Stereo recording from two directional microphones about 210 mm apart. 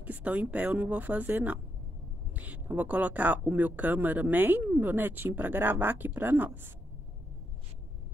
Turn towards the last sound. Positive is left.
turn(degrees=-10)  # may be behind; listen again after turning